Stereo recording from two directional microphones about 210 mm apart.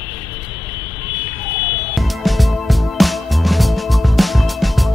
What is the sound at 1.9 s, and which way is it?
Music, centre (ahead or behind).